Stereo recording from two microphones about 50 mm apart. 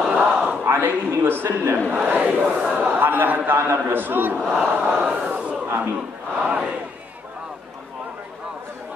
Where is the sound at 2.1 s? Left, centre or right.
Right.